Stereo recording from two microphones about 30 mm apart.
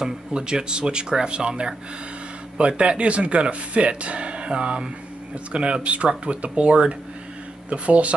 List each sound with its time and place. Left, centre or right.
0.3 s speech: right